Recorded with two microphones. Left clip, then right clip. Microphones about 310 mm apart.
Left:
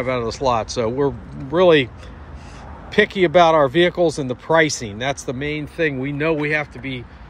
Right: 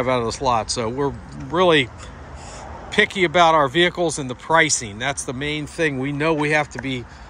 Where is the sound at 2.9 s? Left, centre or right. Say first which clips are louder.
Left 2 dB; centre.